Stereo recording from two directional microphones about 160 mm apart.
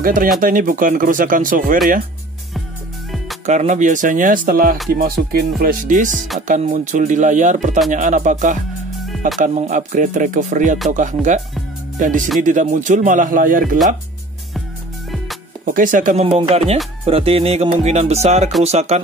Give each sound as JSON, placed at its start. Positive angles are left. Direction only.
{"t": 0.0, "sound": "speech", "side_deg": -60}
{"t": 3.4, "sound": "speech", "side_deg": -45}
{"t": 6.1, "sound": "speech", "side_deg": 0}
{"t": 6.4, "sound": "speech", "side_deg": -55}
{"t": 15.6, "sound": "speech", "side_deg": -60}
{"t": 16.3, "sound": "music", "side_deg": -40}
{"t": 18.6, "sound": "speech", "side_deg": -45}